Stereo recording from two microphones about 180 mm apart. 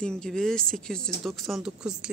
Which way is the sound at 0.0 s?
5° left (ahead or behind).